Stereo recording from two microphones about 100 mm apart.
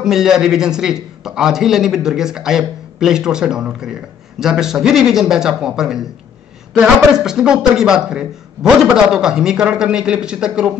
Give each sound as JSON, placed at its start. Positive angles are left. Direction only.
{"t": 0.0, "sound": "a man's voice", "side_deg": -5}
{"t": 7.2, "sound": "a man's voice", "side_deg": -5}